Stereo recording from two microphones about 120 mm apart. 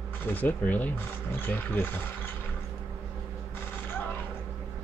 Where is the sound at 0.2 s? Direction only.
15° left (ahead or behind).